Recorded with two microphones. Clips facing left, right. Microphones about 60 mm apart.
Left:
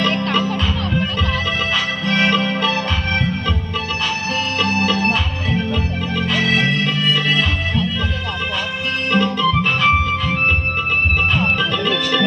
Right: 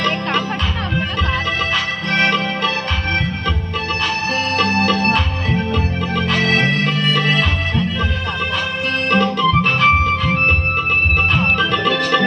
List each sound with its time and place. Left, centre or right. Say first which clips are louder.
2.0 s music: even; right
4.6 s music: right 2 dB; right
9.1 s music: right 2 dB; right